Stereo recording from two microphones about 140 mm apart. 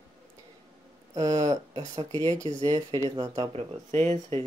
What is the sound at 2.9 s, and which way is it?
Speech, 30° right (ahead or behind).